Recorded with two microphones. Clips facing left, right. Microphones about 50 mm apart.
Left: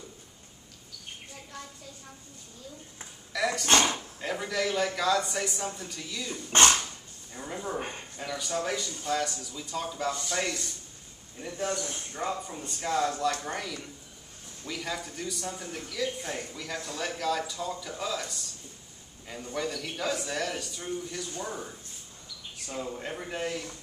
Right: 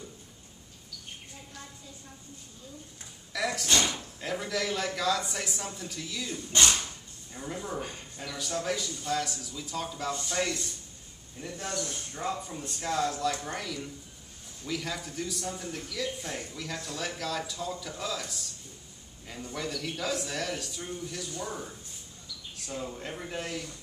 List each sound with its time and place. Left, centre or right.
3.3 s a sound: centre
3.6 s speech: left
4.2 s a man's voice: centre
6.5 s speech: left
7.3 s speech: centre
7.8 s speech: left
8.2 s a man's voice: centre
12.4 s a man's voice: centre
22.8 s speech: centre